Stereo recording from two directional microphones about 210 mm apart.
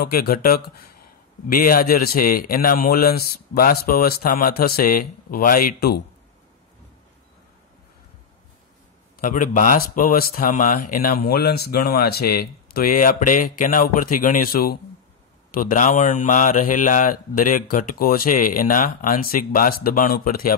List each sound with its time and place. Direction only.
0.0 s speech: 45° left (ahead or behind)
9.2 s speech: 40° left (ahead or behind)